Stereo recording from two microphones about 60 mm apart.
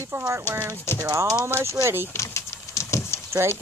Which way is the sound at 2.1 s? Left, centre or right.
Left.